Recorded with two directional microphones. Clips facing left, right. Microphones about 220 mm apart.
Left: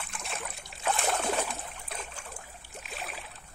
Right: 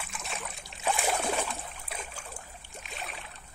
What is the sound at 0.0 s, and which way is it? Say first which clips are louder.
Boat: even; centre (ahead or behind).